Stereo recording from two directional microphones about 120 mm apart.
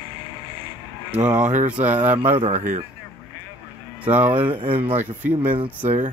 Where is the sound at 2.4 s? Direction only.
75° right (ahead or behind).